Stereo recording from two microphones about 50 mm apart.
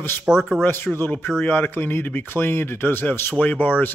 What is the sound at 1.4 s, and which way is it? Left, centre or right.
Speech, left.